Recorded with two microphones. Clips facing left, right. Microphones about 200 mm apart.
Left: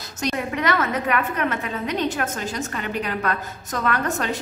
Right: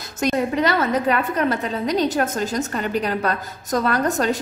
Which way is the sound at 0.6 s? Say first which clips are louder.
Right 3 dB; 30° right (ahead or behind).